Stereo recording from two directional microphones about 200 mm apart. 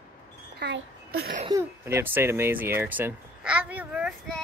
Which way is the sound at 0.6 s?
60° right (ahead or behind).